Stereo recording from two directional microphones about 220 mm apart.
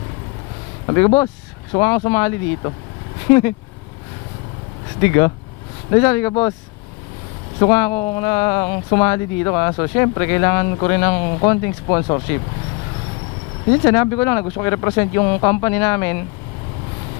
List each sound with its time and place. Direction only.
0.8 s speech: 15° left (ahead or behind)
5.0 s speech: 15° left (ahead or behind)
7.5 s speech: 15° left (ahead or behind)
13.8 s speech: 15° left (ahead or behind)